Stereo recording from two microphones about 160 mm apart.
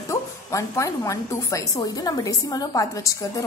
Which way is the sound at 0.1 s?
20° left (ahead or behind).